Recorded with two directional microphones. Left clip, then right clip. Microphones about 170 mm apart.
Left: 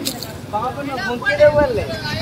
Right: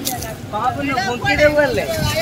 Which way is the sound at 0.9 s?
75° right (ahead or behind).